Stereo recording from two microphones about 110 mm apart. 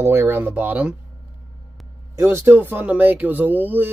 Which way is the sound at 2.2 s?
25° right (ahead or behind).